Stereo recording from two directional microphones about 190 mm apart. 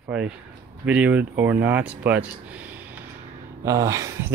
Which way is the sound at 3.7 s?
15° right (ahead or behind).